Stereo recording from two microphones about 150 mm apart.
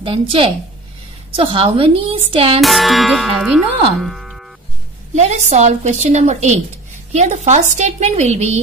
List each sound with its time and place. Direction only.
0.0 s a woman's voice: 35° right (ahead or behind)
2.6 s speech: centre (ahead or behind)
5.1 s a woman's voice: 50° right (ahead or behind)